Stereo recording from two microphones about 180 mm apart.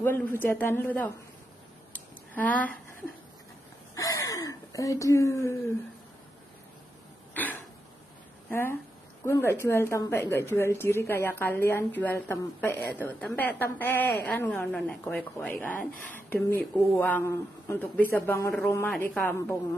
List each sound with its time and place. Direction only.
0.0 s a woman's voice: 10° left (ahead or behind)
2.3 s a woman's voice: 10° left (ahead or behind)
3.9 s speech: 20° left (ahead or behind)
8.5 s a woman's voice: 10° left (ahead or behind)